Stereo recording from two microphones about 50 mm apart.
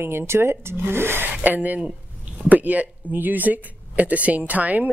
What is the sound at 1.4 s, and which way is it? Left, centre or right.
Speech, right.